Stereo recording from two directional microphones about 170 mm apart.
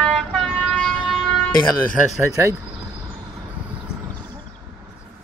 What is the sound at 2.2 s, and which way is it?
Speech, 15° right (ahead or behind).